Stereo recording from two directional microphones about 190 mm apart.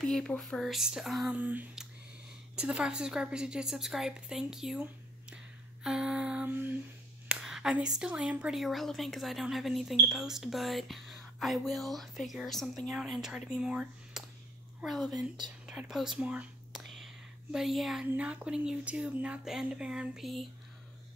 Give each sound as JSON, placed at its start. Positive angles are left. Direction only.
{"t": 0.0, "sound": "a woman's voice", "side_deg": 5}
{"t": 5.9, "sound": "a woman's voice", "side_deg": -5}
{"t": 15.1, "sound": "speech", "side_deg": -20}
{"t": 15.6, "sound": "speech", "side_deg": -5}